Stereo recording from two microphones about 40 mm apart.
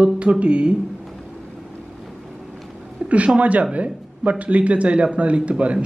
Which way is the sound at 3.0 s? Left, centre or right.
Right.